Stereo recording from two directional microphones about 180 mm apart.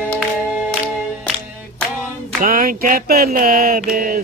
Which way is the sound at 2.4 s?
50° right (ahead or behind).